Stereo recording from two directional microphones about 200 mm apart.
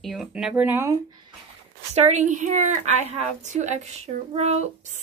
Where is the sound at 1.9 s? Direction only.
35° right (ahead or behind).